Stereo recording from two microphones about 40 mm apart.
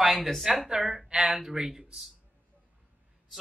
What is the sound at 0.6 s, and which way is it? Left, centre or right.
Speech, centre.